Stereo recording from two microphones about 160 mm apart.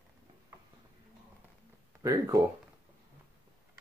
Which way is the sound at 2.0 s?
15° right (ahead or behind).